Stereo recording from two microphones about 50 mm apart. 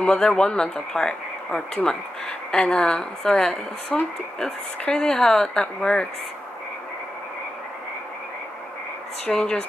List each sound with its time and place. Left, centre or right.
0.0 s speech: centre
9.3 s speech: centre